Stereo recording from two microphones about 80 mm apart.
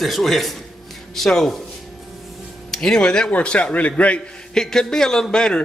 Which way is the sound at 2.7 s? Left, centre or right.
Centre.